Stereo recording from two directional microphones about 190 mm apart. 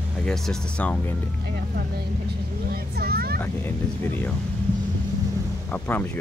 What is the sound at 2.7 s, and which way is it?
Speech, 55° right (ahead or behind).